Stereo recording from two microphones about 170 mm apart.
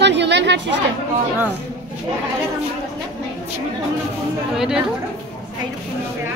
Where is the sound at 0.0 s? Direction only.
90° right.